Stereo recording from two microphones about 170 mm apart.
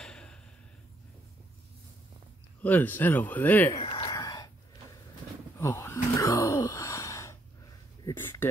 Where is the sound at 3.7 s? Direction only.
25° left (ahead or behind).